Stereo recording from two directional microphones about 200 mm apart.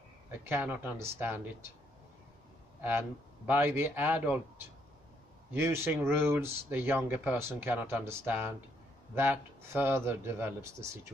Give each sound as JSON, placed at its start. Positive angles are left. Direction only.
{"t": 0.3, "sound": "speech", "side_deg": -10}
{"t": 2.8, "sound": "speech", "side_deg": -10}